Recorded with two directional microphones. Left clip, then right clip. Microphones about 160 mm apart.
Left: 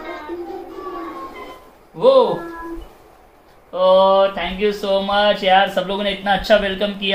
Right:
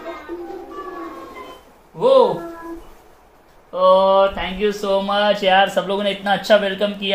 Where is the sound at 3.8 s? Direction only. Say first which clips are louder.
Even; 30° right (ahead or behind).